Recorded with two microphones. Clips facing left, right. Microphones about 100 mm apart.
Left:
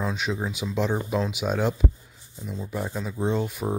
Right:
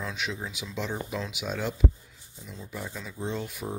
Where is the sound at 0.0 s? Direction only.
40° left (ahead or behind).